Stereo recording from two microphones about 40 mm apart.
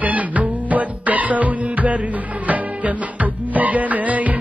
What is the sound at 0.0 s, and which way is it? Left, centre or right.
Music, right.